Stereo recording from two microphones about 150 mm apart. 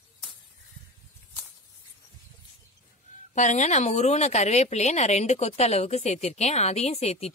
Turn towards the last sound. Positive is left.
turn(degrees=45)  # may be behind; listen again after turning